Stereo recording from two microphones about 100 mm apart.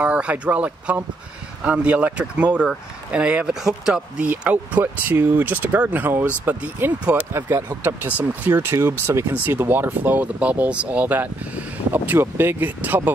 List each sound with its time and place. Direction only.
0.0 s speech: 10° right (ahead or behind)